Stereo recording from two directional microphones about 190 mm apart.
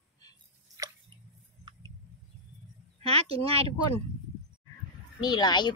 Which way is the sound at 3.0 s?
30° right (ahead or behind).